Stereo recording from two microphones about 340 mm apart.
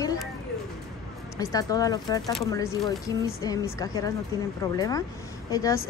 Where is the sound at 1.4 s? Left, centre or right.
Centre.